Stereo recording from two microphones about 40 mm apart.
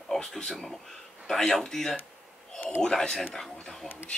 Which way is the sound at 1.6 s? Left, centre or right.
Centre.